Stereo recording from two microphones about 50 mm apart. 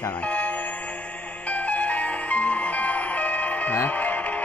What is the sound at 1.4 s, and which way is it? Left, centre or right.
Music, left.